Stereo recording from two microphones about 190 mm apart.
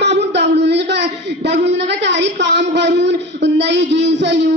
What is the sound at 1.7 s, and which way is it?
A man's voice, 65° right (ahead or behind).